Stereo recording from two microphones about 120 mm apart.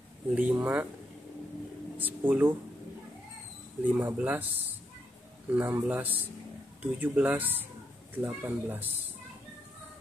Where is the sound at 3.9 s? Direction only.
15° right (ahead or behind).